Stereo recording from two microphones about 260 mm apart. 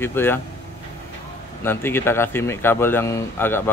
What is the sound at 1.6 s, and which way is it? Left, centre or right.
A man's voice, centre.